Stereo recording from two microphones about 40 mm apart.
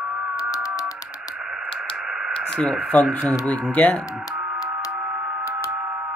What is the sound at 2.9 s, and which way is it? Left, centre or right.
Speech, left.